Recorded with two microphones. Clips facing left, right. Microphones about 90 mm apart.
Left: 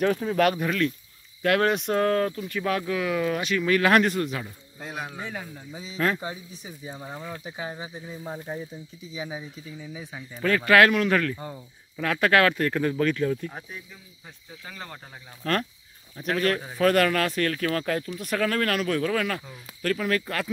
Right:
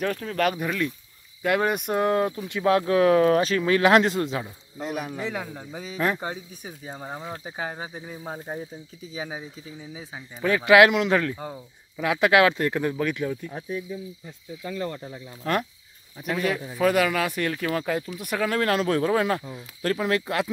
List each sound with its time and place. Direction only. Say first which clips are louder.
0.0 s speech: left 3 dB; 5° left (ahead or behind); by 3.0 s 25° right (ahead or behind)
3.0 s speech: right 8 dB; 40° right (ahead or behind); by 4.5 s 25° right (ahead or behind)
5.1 s speech: right 5 dB; 90° right
5.7 s speech: right 3 dB; 55° right (ahead or behind)
5.9 s speech: even; 15° right (ahead or behind)
6.5 s speech: right 1 dB; 45° right (ahead or behind)
7.1 s speech: right 3 dB; 20° right (ahead or behind)
7.3 s speech: right 2 dB; 40° right (ahead or behind)
8.2 s speech: even; 35° right (ahead or behind)
10.1 s speech: right 1 dB; 15° right (ahead or behind)
11.5 s speech: right 1 dB; 15° right (ahead or behind)
15.4 s speech: right 1 dB; 15° right (ahead or behind)